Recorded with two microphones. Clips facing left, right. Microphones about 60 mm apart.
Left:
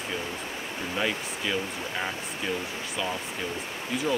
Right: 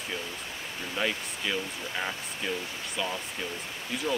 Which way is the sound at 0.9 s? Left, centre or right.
Centre.